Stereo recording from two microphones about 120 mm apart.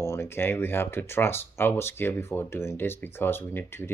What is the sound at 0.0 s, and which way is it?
Speech, 20° left (ahead or behind).